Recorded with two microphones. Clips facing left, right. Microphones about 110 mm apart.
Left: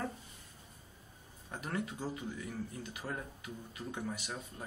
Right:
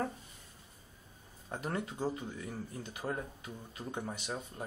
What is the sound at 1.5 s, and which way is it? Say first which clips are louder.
Speech: right 2 dB; 30° right (ahead or behind).